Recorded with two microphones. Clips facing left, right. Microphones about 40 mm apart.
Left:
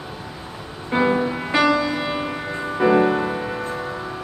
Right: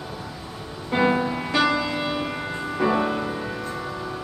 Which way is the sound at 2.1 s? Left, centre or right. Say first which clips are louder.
Left 2 dB; left.